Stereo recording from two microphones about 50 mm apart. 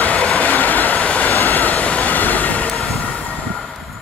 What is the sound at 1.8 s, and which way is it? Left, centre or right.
Train, left.